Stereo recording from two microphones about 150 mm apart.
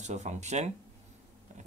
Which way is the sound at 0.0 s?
50° right (ahead or behind).